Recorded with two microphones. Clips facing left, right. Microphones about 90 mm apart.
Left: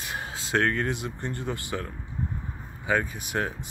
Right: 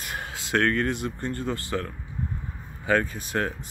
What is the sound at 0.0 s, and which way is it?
Speech, 20° left (ahead or behind).